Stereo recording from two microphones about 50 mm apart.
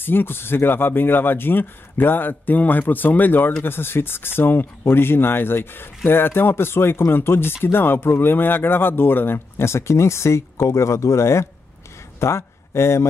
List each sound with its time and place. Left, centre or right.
0.0 s speech: left